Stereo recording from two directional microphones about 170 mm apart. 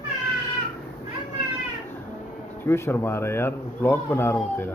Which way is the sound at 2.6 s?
15° left (ahead or behind).